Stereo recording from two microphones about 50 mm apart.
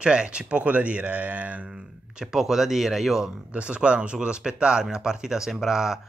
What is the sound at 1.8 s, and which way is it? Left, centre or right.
Speech, centre.